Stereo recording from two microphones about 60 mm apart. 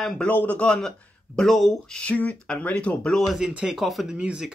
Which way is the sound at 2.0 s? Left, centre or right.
Left.